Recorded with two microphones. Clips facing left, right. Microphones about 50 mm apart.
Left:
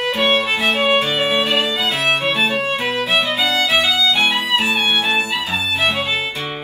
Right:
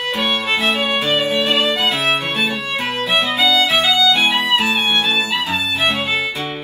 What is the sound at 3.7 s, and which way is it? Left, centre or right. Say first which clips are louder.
Violin: right 1 dB; right.